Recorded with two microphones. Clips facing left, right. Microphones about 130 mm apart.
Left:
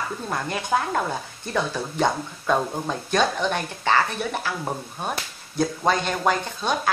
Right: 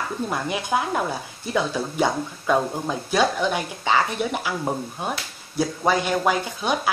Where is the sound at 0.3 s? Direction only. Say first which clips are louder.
Left 1 dB; 15° right (ahead or behind).